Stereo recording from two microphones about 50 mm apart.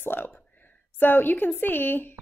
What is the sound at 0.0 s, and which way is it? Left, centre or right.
Speech, left.